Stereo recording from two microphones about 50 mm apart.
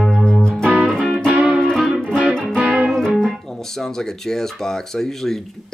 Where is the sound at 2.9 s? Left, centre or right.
Centre.